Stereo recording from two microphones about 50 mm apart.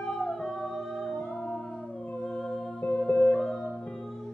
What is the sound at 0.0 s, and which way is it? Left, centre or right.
Music, centre.